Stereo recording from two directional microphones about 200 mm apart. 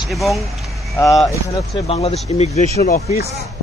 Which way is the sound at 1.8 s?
30° left (ahead or behind).